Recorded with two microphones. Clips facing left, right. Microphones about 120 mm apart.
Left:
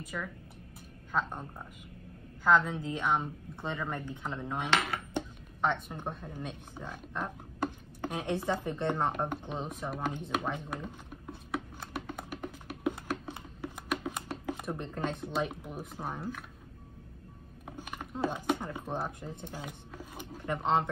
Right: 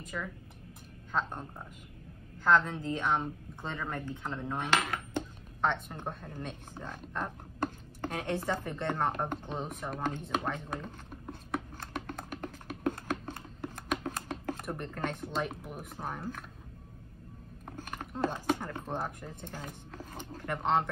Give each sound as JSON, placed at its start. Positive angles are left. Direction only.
{"t": 0.0, "sound": "speech", "side_deg": 0}
{"t": 2.4, "sound": "a woman's voice", "side_deg": 5}
{"t": 11.5, "sound": "a sound", "side_deg": 10}
{"t": 14.8, "sound": "a woman's voice", "side_deg": 15}
{"t": 17.7, "sound": "speech", "side_deg": 10}